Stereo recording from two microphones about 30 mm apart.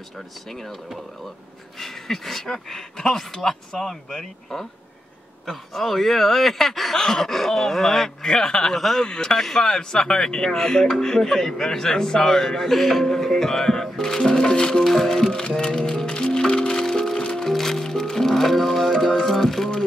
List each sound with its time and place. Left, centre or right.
1.8 s speech: centre
5.5 s speech: centre
8.2 s speech: left
8.7 s speech: centre
9.0 s speech: left
14.4 s music: left
14.9 s speech: centre
15.1 s music: centre
15.4 s speech: left
16.1 s music: left; by 19.7 s centre